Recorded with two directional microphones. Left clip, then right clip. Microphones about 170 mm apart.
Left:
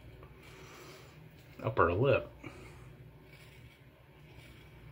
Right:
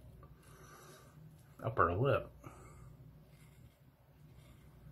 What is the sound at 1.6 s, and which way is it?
Speech, 5° left (ahead or behind).